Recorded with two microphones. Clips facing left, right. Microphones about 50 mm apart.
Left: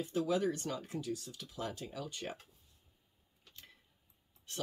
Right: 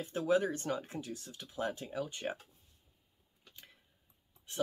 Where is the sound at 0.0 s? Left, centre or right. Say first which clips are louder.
Right 2 dB; right.